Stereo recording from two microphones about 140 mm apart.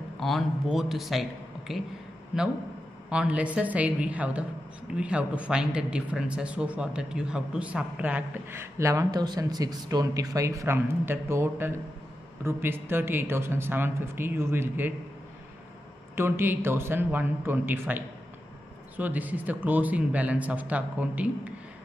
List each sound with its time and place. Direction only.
0.2 s speech: centre (ahead or behind)
3.1 s speech: 10° right (ahead or behind)
16.2 s speech: 15° right (ahead or behind)